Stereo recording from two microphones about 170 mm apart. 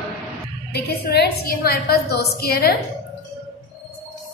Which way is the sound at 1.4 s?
65° left (ahead or behind).